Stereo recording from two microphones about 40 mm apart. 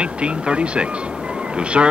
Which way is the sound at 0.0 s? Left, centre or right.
Right.